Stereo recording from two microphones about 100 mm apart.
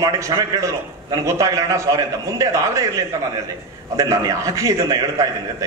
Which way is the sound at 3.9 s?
35° right (ahead or behind).